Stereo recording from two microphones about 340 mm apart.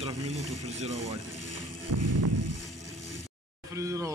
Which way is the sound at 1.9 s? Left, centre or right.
Right.